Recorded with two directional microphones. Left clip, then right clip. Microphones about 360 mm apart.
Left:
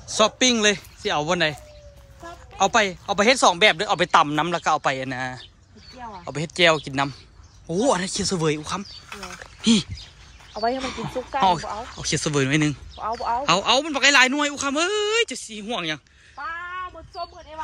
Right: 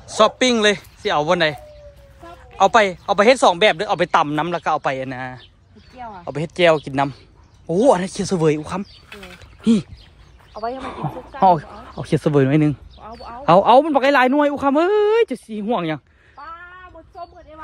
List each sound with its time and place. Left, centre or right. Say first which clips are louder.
0.2 s speech: right 4 dB; centre
10.5 s a sound: left 2 dB; left
10.8 s a man's voice: even; centre
13.0 s a man's voice: left 12 dB; centre
13.5 s a man's voice: right 10 dB; centre